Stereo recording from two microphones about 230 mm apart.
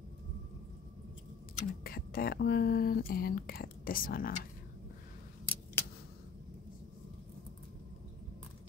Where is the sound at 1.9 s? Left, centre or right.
Left.